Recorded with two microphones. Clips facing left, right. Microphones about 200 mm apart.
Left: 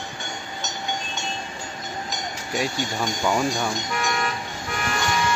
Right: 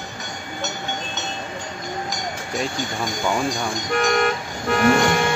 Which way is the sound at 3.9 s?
55° right (ahead or behind).